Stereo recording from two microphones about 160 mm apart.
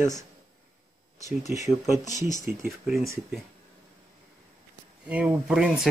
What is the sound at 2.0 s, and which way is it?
Speech, 50° left (ahead or behind).